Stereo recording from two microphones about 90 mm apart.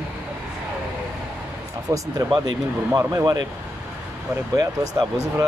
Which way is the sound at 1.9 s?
35° right (ahead or behind).